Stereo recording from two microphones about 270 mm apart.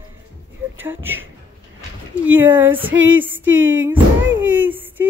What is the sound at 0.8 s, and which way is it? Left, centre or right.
Speech, centre.